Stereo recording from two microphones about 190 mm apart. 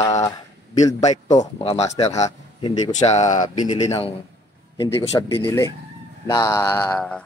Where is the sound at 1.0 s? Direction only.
35° left (ahead or behind).